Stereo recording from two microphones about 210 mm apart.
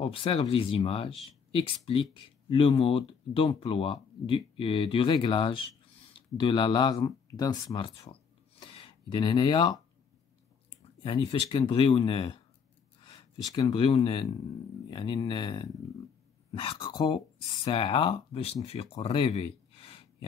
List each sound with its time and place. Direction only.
0.0 s speech: 25° left (ahead or behind)
11.0 s speech: 25° left (ahead or behind)